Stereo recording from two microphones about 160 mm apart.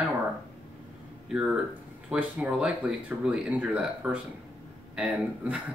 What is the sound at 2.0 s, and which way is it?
Speech, 10° right (ahead or behind).